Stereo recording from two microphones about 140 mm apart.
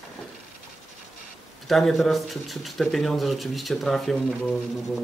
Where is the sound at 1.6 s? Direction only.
Centre (ahead or behind).